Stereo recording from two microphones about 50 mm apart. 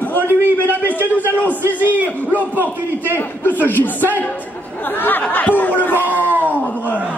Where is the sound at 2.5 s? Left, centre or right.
Right.